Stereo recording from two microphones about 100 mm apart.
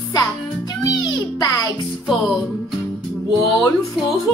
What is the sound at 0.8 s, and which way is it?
Music, 40° left (ahead or behind).